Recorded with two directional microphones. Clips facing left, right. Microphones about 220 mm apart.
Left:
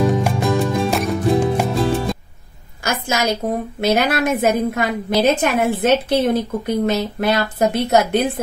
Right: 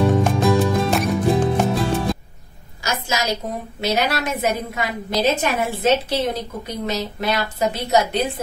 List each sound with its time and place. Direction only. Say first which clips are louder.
0.0 s music: even; centre (ahead or behind)
2.8 s a sound: left 3 dB; 55° left (ahead or behind)
3.8 s speech: left 4 dB; 55° left (ahead or behind)